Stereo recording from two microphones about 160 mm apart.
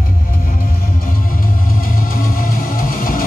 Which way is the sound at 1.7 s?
60° left (ahead or behind).